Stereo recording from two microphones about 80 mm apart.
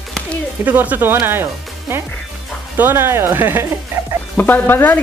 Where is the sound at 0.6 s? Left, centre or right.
Right.